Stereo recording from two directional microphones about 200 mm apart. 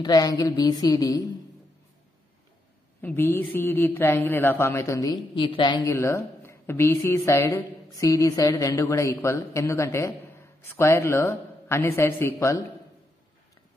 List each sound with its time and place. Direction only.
0.0 s a woman's voice: 20° left (ahead or behind)
3.0 s speech: 10° left (ahead or behind)